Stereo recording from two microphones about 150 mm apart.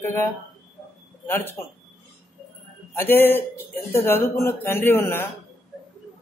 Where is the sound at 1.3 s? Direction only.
15° left (ahead or behind).